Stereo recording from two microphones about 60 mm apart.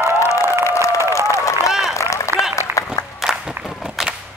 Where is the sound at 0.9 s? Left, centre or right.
Right.